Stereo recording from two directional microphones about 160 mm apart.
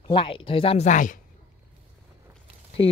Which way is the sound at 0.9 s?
55° left (ahead or behind).